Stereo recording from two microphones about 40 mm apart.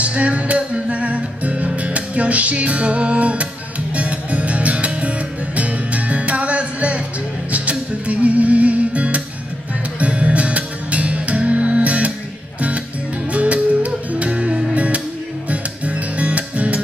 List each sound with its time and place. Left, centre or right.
0.0 s music: right
13.3 s music: right